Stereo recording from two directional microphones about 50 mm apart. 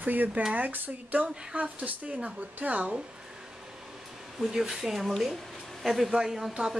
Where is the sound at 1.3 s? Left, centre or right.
Centre.